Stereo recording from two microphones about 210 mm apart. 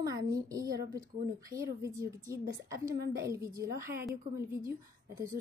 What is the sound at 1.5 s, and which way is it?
Speech, 15° right (ahead or behind).